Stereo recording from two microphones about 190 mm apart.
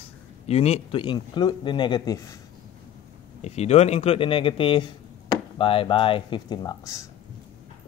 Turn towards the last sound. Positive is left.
turn(degrees=20)  # may be behind; listen again after turning